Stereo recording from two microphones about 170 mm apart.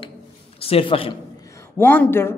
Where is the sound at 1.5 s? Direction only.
10° left (ahead or behind).